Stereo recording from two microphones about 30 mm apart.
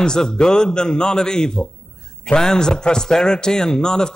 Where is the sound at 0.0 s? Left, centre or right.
Left.